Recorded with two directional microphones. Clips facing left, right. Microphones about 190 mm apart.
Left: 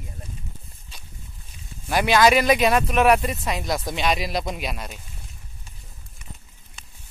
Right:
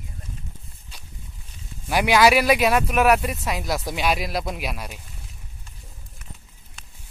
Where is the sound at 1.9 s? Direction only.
10° right (ahead or behind).